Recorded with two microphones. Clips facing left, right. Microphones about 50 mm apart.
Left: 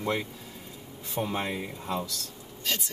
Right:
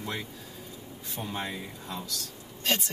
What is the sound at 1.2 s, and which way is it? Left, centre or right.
Speech, left.